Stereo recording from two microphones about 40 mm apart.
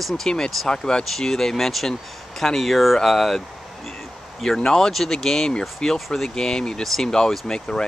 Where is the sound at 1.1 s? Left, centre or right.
Centre.